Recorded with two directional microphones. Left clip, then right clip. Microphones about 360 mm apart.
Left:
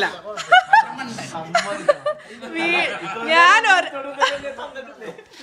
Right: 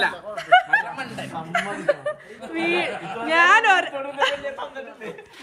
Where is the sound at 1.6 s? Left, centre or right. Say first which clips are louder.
Left 4 dB; centre.